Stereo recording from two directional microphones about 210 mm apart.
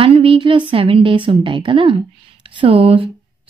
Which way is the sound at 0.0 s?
25° right (ahead or behind).